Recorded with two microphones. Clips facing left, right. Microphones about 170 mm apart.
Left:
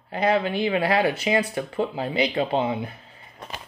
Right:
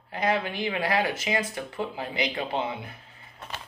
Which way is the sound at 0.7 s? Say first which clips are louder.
Left 4 dB; 25° left (ahead or behind).